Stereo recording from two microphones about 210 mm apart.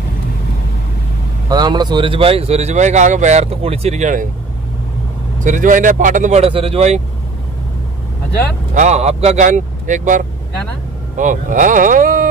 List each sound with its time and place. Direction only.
1.5 s speech: 20° right (ahead or behind); by 4.3 s 35° right (ahead or behind)
5.4 s speech: 40° right (ahead or behind)
8.7 s speech: 35° right (ahead or behind)